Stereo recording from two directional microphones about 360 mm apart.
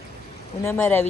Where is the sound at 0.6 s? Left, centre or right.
Centre.